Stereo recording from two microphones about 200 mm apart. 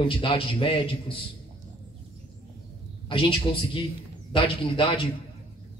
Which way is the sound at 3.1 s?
25° left (ahead or behind).